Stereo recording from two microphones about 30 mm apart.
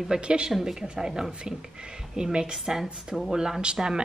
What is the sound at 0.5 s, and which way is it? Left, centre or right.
Speech, centre.